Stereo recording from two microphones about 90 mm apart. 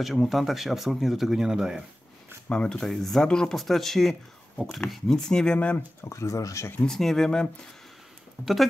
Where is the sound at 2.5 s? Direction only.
10° left (ahead or behind).